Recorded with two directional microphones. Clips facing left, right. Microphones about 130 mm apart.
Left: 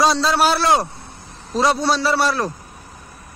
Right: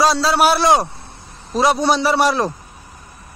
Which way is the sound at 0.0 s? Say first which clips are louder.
Right 1 dB; centre (ahead or behind).